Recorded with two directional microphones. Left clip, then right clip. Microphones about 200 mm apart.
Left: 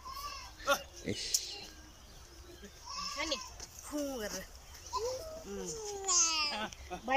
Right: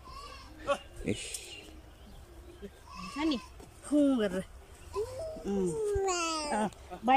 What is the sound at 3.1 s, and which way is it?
Speech, 55° right (ahead or behind).